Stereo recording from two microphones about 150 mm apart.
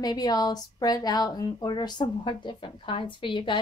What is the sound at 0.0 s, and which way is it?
Speech, 25° left (ahead or behind).